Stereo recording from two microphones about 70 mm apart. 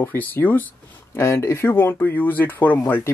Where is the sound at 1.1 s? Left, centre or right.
Left.